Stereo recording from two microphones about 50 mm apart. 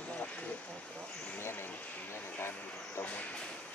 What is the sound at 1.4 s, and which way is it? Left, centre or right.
Vehicle, left.